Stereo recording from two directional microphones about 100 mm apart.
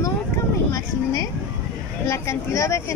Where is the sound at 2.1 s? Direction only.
30° left (ahead or behind).